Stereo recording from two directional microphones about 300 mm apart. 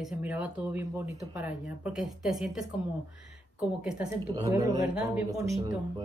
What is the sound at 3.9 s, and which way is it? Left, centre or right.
Speech, centre.